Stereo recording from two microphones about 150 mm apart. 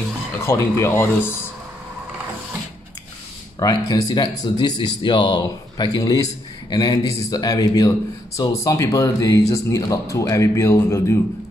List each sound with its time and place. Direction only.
0.4 s speech: 20° left (ahead or behind)
3.5 s speech: 25° left (ahead or behind)